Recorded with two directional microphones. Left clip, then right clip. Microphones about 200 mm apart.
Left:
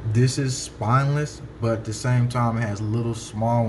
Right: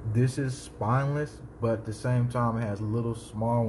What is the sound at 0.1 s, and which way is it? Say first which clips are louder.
Speech: left 6 dB; centre (ahead or behind).